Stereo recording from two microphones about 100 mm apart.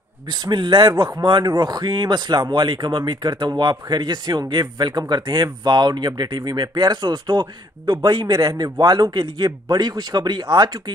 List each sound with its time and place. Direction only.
0.3 s speech: 45° right (ahead or behind)